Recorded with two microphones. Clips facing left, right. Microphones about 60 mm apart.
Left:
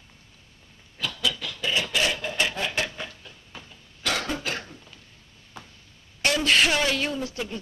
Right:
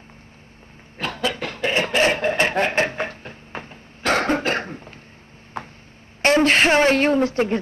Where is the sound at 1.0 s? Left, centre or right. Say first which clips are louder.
Right 5 dB; right.